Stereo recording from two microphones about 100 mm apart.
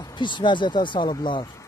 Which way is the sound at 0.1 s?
50° left (ahead or behind).